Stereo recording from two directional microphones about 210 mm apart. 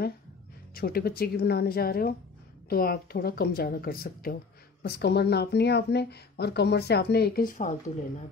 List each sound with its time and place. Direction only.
0.7 s speech: 45° left (ahead or behind)